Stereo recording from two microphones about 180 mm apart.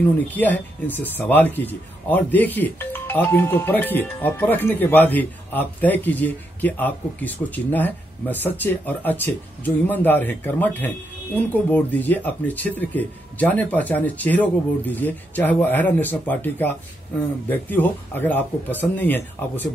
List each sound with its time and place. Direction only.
0.3 s speech: 10° left (ahead or behind)